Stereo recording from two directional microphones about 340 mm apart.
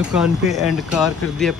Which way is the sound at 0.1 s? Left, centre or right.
Centre.